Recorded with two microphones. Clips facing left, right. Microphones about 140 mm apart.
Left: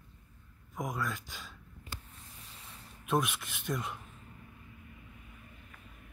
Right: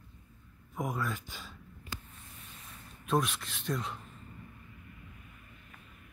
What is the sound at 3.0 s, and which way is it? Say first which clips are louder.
Speech: right 1 dB; 10° left (ahead or behind).